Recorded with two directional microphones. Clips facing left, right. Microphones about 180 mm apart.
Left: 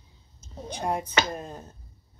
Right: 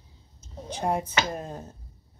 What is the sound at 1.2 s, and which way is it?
Speech, 15° right (ahead or behind).